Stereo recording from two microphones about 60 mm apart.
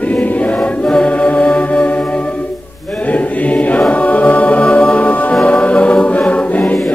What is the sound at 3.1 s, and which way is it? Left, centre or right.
Choir, left.